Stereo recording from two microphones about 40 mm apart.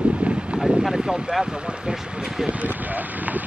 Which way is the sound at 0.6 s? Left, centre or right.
Centre.